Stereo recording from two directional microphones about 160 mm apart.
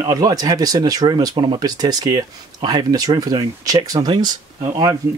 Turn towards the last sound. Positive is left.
turn(degrees=-20)  # may be behind; listen again after turning